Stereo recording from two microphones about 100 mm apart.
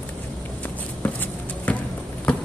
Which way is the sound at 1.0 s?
20° left (ahead or behind).